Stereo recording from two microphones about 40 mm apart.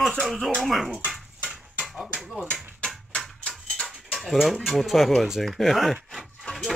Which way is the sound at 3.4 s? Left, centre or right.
Left.